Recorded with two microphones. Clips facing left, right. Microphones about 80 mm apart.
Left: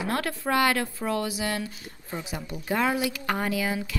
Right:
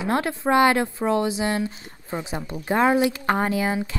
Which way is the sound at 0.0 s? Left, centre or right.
Right.